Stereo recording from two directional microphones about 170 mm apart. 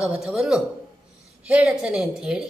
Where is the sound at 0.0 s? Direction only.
5° right (ahead or behind).